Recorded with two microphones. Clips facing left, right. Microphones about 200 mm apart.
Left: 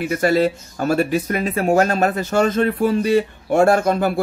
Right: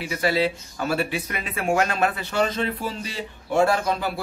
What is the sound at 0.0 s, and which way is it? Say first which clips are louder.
Speech: left 6 dB; 50° left (ahead or behind).